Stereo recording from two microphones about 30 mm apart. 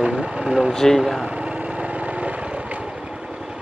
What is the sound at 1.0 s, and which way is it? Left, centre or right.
Speech, centre.